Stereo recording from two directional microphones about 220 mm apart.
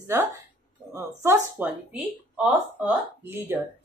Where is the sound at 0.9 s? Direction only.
10° right (ahead or behind).